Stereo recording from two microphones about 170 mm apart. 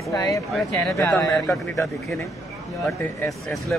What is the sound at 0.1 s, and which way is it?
A man's voice, 20° left (ahead or behind).